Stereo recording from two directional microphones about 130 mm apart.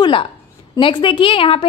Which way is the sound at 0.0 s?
40° left (ahead or behind).